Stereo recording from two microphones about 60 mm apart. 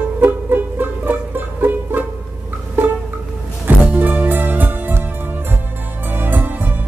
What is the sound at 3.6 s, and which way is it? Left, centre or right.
Music, right.